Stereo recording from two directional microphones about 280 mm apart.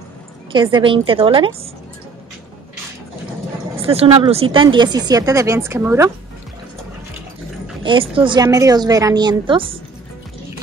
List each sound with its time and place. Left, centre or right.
0.5 s speech: centre
3.7 s speech: right
7.8 s speech: centre